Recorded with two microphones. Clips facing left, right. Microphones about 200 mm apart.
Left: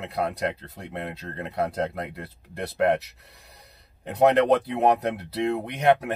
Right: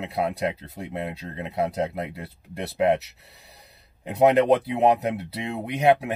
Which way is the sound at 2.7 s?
25° right (ahead or behind).